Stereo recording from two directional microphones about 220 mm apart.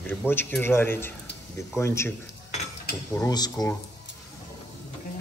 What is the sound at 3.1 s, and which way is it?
Speech, 15° left (ahead or behind).